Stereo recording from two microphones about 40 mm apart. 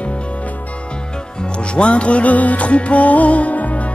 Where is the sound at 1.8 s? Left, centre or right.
Left.